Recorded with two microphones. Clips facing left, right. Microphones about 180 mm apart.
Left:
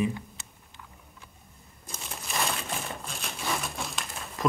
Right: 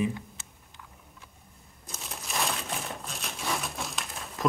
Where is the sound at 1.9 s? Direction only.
Centre (ahead or behind).